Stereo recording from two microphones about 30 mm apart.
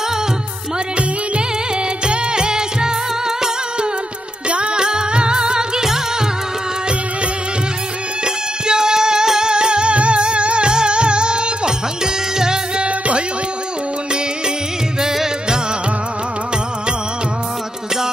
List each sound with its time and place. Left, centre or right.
2.0 s music: right
4.5 s music: right
8.6 s music: right
12.0 s music: right
12.8 s music: right